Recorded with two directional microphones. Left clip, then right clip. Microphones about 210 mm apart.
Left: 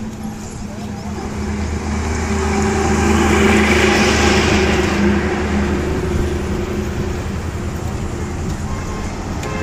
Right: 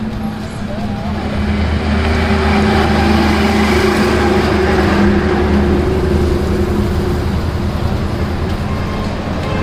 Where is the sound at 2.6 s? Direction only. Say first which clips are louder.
Right 4 dB; 50° right (ahead or behind).